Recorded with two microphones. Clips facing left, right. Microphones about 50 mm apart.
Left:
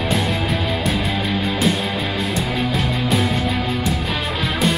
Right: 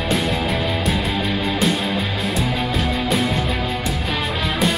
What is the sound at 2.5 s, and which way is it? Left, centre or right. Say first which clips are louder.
Music: even; centre.